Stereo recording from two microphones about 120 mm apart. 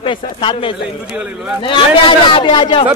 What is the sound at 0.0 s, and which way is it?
Speech, 45° left (ahead or behind).